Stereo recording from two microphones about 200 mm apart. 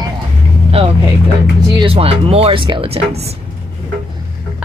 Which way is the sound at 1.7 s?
25° right (ahead or behind).